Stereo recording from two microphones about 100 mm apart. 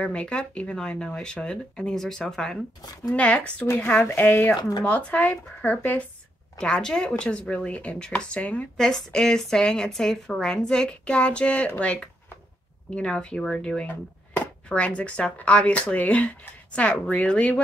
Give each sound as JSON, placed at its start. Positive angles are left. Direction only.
{"t": 0.0, "sound": "speech", "side_deg": 10}
{"t": 4.6, "sound": "speech", "side_deg": 45}
{"t": 4.8, "sound": "speech", "side_deg": 15}
{"t": 6.6, "sound": "speech", "side_deg": 5}